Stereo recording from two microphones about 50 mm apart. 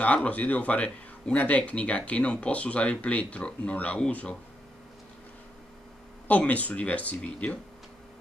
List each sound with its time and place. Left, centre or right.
0.0 s speech: left
6.2 s speech: left